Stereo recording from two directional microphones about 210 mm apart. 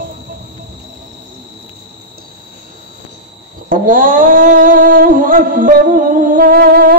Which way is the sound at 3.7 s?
40° right (ahead or behind).